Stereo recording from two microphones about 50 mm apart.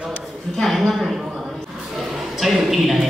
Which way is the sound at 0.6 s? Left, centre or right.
Centre.